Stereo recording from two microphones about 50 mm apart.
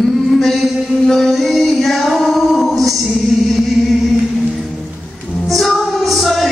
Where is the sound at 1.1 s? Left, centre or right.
Centre.